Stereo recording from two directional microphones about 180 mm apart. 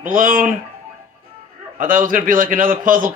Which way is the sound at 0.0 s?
50° right (ahead or behind).